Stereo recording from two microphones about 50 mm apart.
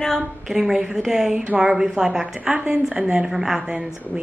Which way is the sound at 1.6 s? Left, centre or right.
Centre.